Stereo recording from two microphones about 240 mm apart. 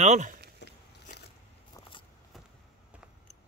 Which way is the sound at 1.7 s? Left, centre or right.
Left.